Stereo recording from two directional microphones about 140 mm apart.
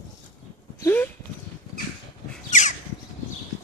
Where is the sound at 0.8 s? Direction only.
15° left (ahead or behind).